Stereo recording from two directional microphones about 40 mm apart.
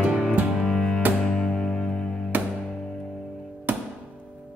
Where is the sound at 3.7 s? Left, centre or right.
Right.